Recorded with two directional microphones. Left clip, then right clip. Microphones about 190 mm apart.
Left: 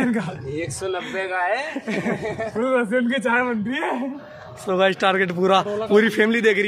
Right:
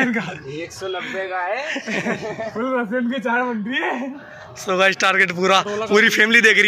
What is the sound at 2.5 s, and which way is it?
Speech, 35° left (ahead or behind).